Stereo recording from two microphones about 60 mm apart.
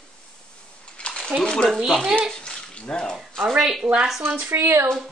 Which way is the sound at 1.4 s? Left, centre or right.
Centre.